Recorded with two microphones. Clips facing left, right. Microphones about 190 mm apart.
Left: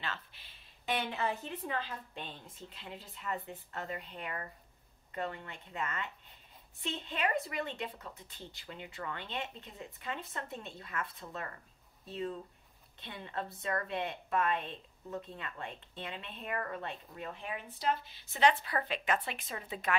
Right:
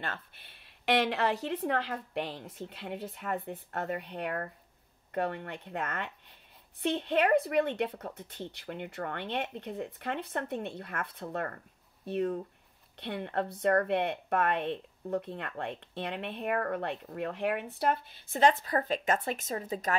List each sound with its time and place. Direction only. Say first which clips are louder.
0.0 s a woman's voice: right 3 dB; 55° right (ahead or behind)